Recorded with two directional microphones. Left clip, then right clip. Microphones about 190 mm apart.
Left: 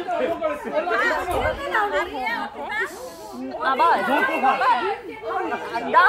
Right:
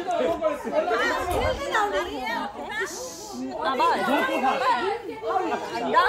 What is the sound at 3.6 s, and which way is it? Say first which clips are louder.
Speech: left 4 dB; 20° left (ahead or behind).